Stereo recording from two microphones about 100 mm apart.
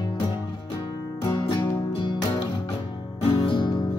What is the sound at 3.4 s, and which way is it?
Music, 50° left (ahead or behind).